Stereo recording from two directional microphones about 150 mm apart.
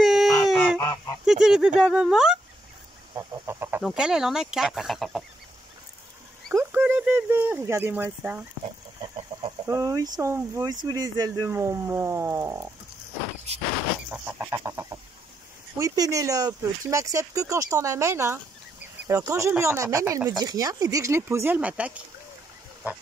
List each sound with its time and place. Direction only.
0.0 s a sound: centre (ahead or behind)
0.7 s goose: 20° left (ahead or behind)
1.2 s speech: 5° right (ahead or behind)
3.2 s speech: 15° right (ahead or behind)
3.8 s speech: 5° right (ahead or behind)
6.5 s speech: 15° right (ahead or behind)
9.7 s speech: 20° right (ahead or behind)
14.1 s speech: 10° right (ahead or behind)